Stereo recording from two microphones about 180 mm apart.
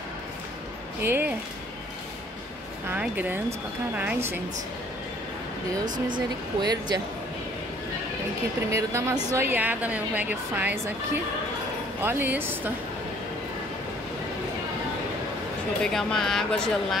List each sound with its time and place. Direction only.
1.0 s speech: 10° right (ahead or behind)
2.9 s a woman's voice: 10° right (ahead or behind)
6.1 s speech: 25° right (ahead or behind)
8.7 s a woman's voice: 15° right (ahead or behind)
12.0 s a woman's voice: 10° right (ahead or behind)
15.8 s speech: 5° left (ahead or behind)